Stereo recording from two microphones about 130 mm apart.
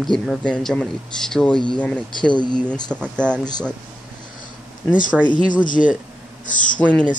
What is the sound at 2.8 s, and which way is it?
Speech, 5° left (ahead or behind).